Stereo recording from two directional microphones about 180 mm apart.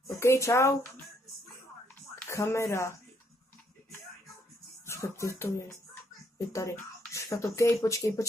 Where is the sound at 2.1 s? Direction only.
15° left (ahead or behind).